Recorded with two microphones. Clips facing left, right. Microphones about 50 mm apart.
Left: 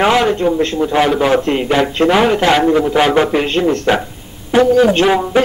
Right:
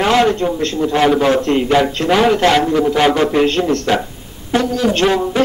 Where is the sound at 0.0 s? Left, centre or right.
Centre.